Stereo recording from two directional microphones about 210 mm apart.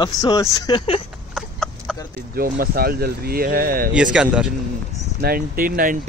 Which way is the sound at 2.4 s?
45° right (ahead or behind).